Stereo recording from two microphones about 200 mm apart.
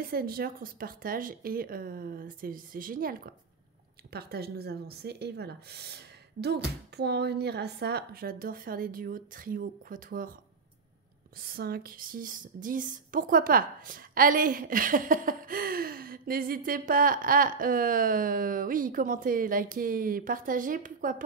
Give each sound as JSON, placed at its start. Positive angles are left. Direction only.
{"t": 0.0, "sound": "speech", "side_deg": -50}
{"t": 11.4, "sound": "speech", "side_deg": -50}